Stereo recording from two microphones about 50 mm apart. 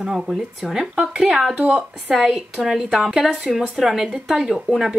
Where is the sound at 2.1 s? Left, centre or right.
Centre.